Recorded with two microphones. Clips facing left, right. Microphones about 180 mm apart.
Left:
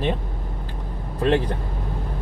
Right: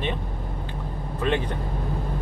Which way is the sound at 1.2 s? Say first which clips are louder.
Left 5 dB; 35° left (ahead or behind).